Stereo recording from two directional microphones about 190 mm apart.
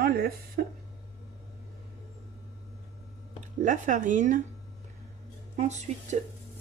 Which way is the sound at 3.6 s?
40° right (ahead or behind).